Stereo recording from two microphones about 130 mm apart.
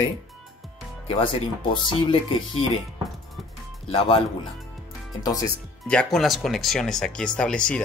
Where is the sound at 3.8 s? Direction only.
45° left (ahead or behind).